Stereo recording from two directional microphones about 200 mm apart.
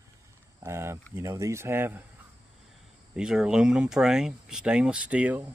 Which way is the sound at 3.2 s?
5° right (ahead or behind).